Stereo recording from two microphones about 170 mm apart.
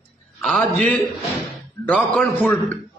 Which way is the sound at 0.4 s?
Centre (ahead or behind).